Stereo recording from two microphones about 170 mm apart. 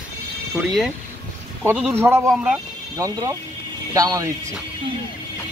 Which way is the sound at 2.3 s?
5° right (ahead or behind).